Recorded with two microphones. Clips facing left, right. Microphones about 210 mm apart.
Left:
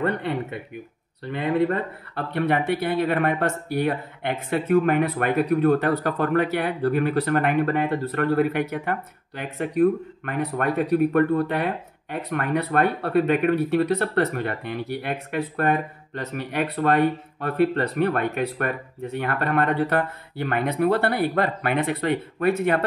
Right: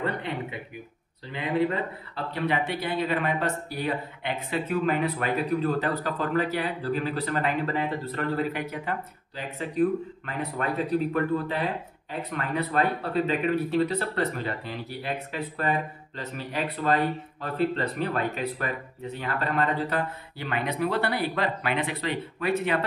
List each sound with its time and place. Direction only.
1.2 s speech: 55° left (ahead or behind)